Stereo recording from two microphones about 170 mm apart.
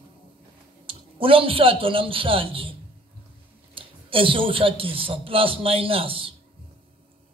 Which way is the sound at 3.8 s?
30° right (ahead or behind).